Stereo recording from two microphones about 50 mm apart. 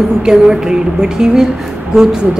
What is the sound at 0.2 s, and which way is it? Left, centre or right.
Speech, centre.